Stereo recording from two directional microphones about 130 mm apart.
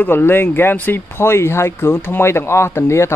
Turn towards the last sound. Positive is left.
turn(degrees=20)  # may be behind; listen again after turning